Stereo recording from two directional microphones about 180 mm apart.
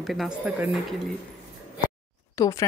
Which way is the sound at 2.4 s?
20° left (ahead or behind).